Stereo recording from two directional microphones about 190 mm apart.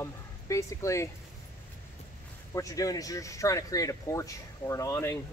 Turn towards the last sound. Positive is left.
turn(degrees=15)  # may be behind; listen again after turning